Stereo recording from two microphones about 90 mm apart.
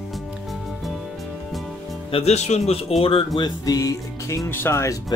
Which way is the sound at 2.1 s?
90° left.